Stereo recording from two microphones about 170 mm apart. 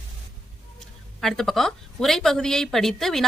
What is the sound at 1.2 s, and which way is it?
Speech, centre (ahead or behind).